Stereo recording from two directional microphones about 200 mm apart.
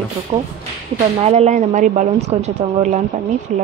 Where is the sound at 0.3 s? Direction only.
20° right (ahead or behind).